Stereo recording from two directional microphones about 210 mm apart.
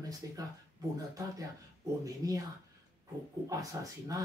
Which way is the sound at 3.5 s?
15° right (ahead or behind).